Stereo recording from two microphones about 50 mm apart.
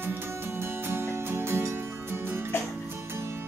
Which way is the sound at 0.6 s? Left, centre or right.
Right.